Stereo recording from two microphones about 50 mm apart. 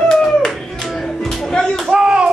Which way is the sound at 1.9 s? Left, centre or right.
Centre.